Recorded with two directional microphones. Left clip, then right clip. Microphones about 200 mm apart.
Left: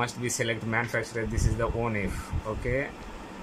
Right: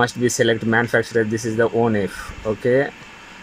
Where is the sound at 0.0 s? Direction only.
50° right (ahead or behind).